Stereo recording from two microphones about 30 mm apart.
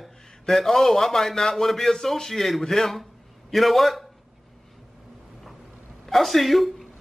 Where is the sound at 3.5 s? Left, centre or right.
Centre.